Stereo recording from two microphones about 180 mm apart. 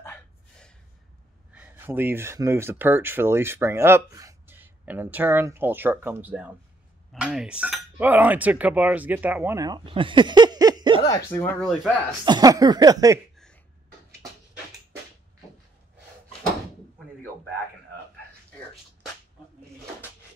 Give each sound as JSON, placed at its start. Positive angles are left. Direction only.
{"t": 0.0, "sound": "gasp", "side_deg": 5}
{"t": 1.5, "sound": "speech", "side_deg": -10}
{"t": 7.1, "sound": "cutlery", "side_deg": -5}
{"t": 11.3, "sound": "speech", "side_deg": 15}
{"t": 11.6, "sound": "speech", "side_deg": -5}
{"t": 12.3, "sound": "speech", "side_deg": -20}